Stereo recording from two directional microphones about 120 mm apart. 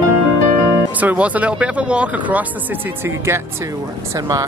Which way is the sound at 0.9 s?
10° right (ahead or behind).